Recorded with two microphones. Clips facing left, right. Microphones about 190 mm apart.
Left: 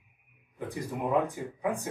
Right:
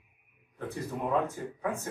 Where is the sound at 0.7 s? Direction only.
15° left (ahead or behind).